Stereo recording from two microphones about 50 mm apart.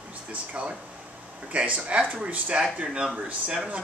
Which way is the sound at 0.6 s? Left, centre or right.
Right.